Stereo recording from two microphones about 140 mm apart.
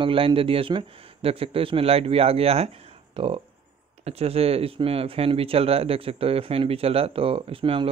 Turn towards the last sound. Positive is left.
turn(degrees=-40)  # may be behind; listen again after turning